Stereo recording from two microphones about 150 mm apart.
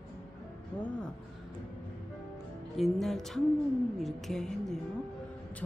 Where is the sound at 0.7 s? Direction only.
10° left (ahead or behind).